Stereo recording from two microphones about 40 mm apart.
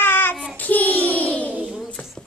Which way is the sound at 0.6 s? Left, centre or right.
Left.